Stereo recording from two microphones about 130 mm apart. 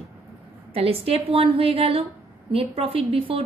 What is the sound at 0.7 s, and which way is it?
A woman's voice, 50° right (ahead or behind).